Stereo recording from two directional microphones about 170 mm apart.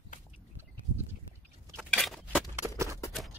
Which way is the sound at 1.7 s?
Centre (ahead or behind).